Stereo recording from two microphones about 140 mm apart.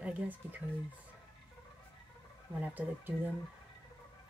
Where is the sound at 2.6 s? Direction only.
10° right (ahead or behind).